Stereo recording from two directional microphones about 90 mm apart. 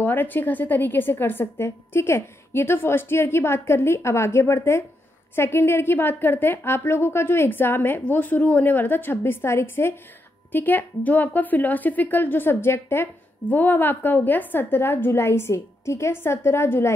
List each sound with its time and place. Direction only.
0.0 s a woman's voice: 20° left (ahead or behind)